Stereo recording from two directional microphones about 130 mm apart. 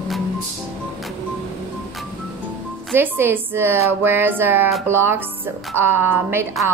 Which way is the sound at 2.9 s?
15° right (ahead or behind).